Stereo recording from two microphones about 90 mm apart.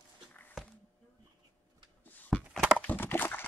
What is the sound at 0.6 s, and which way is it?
Music, centre (ahead or behind).